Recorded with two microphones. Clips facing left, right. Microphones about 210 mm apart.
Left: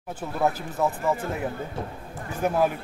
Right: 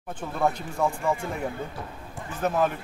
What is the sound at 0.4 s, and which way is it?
A man's voice, 5° left (ahead or behind).